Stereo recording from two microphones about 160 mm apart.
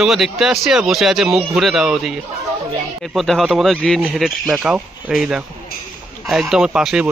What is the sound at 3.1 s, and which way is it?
Speech, centre (ahead or behind).